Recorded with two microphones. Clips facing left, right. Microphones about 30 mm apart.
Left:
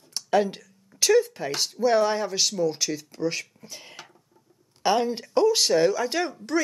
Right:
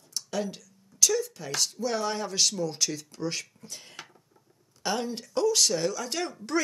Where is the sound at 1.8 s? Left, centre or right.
Left.